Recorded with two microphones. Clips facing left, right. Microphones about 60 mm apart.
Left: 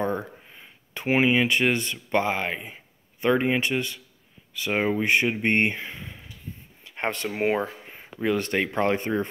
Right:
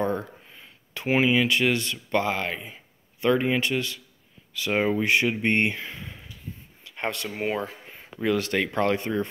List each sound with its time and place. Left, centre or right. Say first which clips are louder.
0.0 s speech: even; centre
5.9 s a sound: even; centre
7.0 s speech: left 3 dB; left
7.9 s speech: right 1 dB; centre